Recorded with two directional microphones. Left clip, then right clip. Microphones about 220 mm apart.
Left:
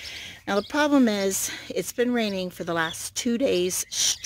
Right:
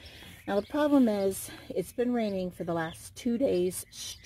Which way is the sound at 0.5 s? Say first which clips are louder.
Left 4 dB; 25° left (ahead or behind).